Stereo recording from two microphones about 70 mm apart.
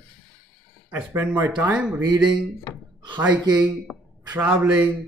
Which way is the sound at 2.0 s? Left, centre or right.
Right.